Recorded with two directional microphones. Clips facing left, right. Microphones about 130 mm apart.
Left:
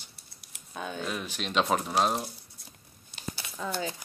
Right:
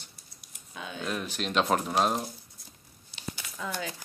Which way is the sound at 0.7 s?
45° left (ahead or behind).